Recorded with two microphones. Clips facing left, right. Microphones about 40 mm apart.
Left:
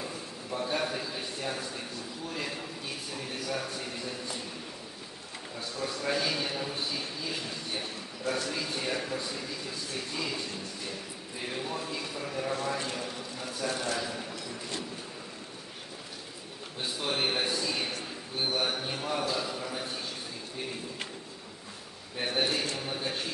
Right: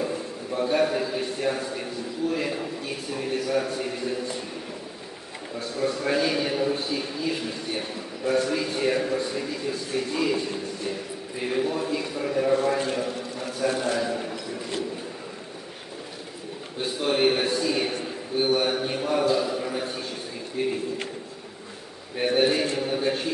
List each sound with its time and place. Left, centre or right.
0.5 s a man's voice: centre
5.6 s a man's voice: centre
16.8 s a man's voice: centre
22.2 s a man's voice: centre